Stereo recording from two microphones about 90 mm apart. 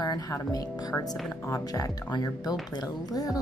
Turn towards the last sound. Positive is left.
turn(degrees=45)  # may be behind; listen again after turning